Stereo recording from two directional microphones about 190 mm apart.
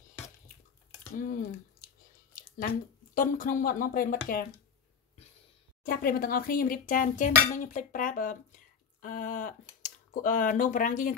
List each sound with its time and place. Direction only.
1.1 s speech: 45° left (ahead or behind)
2.3 s a sound: 50° left (ahead or behind)
3.2 s speech: 45° left (ahead or behind)
5.9 s speech: 50° left (ahead or behind)